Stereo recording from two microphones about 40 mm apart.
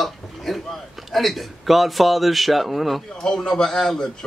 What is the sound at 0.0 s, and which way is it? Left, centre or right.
A man's voice, centre.